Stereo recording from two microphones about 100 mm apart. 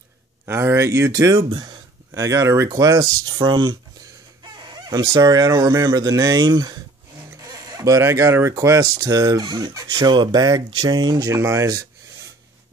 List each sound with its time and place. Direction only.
0.5 s speech: 25° right (ahead or behind)
1.5 s speech: 50° right (ahead or behind)
2.1 s speech: 30° right (ahead or behind)
3.4 s speech: 50° right (ahead or behind)
11.2 s speech: 30° right (ahead or behind)